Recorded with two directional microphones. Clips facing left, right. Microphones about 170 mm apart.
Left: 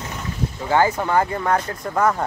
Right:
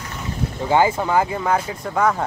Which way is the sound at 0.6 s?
15° right (ahead or behind).